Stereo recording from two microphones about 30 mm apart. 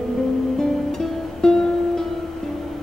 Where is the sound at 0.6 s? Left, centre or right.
Centre.